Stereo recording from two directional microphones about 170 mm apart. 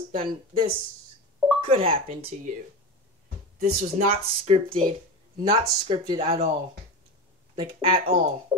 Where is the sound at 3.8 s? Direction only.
40° right (ahead or behind).